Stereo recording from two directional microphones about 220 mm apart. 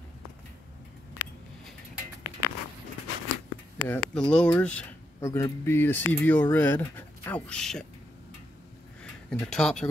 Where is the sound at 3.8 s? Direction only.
20° left (ahead or behind).